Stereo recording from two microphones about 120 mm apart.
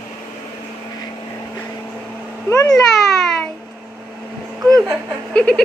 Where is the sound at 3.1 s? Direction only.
5° left (ahead or behind).